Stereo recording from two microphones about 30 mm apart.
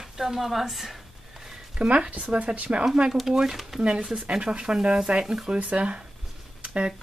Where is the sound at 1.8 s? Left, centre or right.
Right.